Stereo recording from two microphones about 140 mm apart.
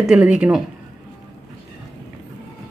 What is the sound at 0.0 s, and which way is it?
Speech, 10° right (ahead or behind).